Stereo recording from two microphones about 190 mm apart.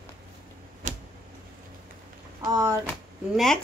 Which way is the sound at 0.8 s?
40° right (ahead or behind).